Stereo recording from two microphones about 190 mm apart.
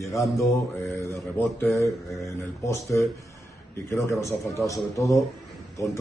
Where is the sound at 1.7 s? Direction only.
15° left (ahead or behind).